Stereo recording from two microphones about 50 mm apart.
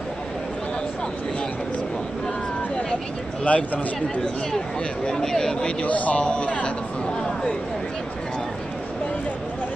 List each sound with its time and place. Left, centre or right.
3.4 s speech: left
5.0 s speech: centre; by 6.7 s left
7.2 s a sound: centre